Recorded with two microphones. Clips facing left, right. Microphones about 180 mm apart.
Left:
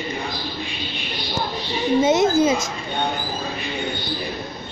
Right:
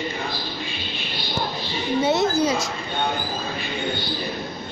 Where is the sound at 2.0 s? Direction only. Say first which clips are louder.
Left 3 dB; 20° left (ahead or behind).